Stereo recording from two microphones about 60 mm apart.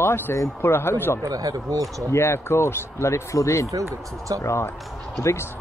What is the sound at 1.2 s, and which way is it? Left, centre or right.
Speech, right.